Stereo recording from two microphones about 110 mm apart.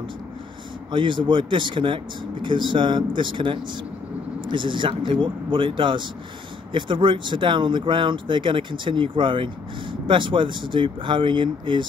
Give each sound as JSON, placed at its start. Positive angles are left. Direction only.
{"t": 0.9, "sound": "speech", "side_deg": -45}